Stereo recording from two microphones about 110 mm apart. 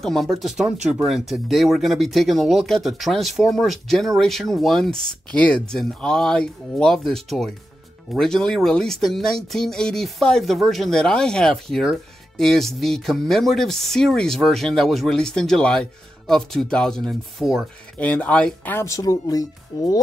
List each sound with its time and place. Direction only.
0.0 s speech: centre (ahead or behind)
17.9 s speech: 15° left (ahead or behind)
18.8 s speech: 30° left (ahead or behind)